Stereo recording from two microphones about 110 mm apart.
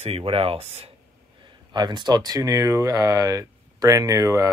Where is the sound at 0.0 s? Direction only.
60° right (ahead or behind).